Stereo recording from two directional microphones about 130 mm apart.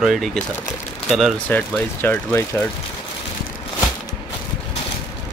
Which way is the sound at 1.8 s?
15° left (ahead or behind).